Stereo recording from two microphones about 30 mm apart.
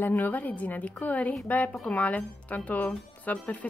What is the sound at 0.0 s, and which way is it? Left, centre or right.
A woman's voice, left.